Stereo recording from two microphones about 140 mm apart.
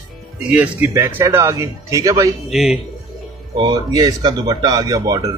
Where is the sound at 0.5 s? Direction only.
10° right (ahead or behind).